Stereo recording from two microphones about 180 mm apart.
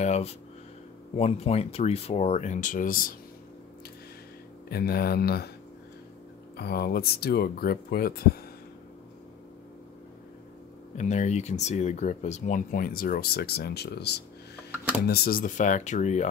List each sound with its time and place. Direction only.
0.0 s speech: 35° left (ahead or behind)
4.6 s speech: 60° left (ahead or behind)
6.5 s speech: 60° left (ahead or behind)
11.0 s speech: 40° left (ahead or behind); by 14.2 s 65° left (ahead or behind)
15.0 s speech: 55° left (ahead or behind)